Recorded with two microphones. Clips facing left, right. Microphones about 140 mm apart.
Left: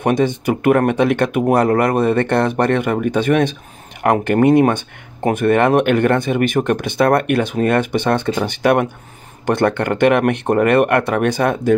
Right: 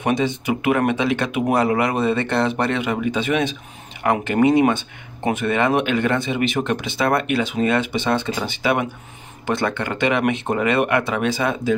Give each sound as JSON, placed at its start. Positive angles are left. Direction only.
{"t": 0.0, "sound": "speech", "side_deg": 50}